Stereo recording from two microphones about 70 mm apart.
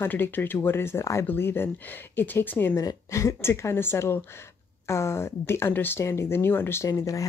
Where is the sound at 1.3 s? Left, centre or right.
Left.